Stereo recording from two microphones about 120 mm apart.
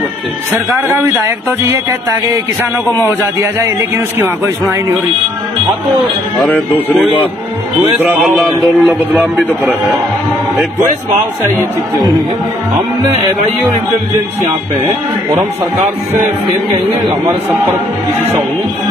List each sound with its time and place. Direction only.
0.8 s a man's voice: 25° right (ahead or behind)
6.4 s speech: 10° left (ahead or behind)
8.7 s speech: centre (ahead or behind)
15.3 s a man's voice: 25° right (ahead or behind)